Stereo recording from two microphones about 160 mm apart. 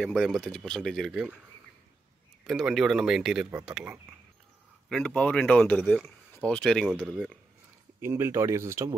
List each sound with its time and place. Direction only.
0.0 s speech: centre (ahead or behind)
2.4 s speech: centre (ahead or behind)
4.8 s speech: 5° left (ahead or behind)
8.0 s speech: 15° right (ahead or behind)